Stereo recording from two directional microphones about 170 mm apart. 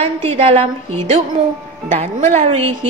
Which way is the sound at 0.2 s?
35° right (ahead or behind).